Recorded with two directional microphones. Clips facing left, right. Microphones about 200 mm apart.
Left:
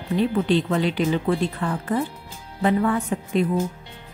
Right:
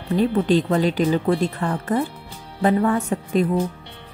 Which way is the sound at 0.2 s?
45° right (ahead or behind).